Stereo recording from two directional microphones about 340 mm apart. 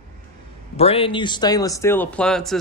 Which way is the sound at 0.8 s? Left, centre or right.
Centre.